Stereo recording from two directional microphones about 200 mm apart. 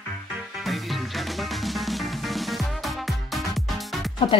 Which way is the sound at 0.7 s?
Centre (ahead or behind).